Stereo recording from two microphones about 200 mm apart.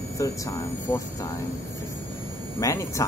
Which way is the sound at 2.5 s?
15° left (ahead or behind).